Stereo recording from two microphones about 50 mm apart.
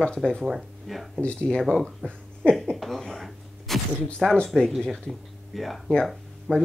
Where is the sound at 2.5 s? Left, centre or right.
Centre.